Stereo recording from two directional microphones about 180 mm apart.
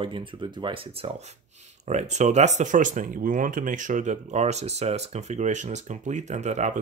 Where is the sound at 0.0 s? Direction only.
30° right (ahead or behind).